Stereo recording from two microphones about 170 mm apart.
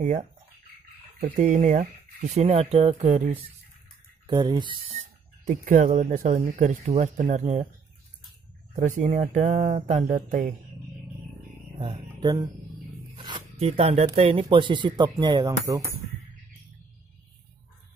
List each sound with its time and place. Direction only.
1.2 s speech: 50° right (ahead or behind)
4.3 s speech: 25° right (ahead or behind); by 7.6 s 45° right (ahead or behind)
8.7 s speech: 45° right (ahead or behind)
11.8 s music: 25° right (ahead or behind)
13.6 s speech: 40° right (ahead or behind)